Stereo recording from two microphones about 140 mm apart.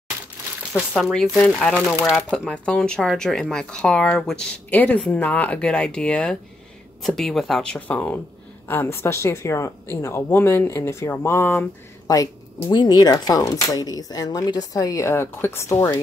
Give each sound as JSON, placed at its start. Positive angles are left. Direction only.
{"t": 0.7, "sound": "speech", "side_deg": 5}
{"t": 12.1, "sound": "speech", "side_deg": 25}